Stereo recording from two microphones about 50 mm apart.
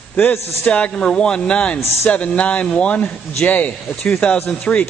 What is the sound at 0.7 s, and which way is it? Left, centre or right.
A man's voice, left.